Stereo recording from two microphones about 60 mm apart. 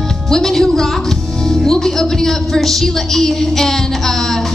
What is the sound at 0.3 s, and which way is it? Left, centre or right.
A woman's voice, centre.